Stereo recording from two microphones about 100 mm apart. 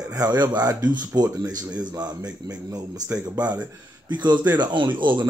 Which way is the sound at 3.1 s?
15° right (ahead or behind).